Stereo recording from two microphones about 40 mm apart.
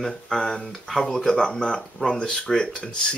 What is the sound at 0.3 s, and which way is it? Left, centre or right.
Speech, centre.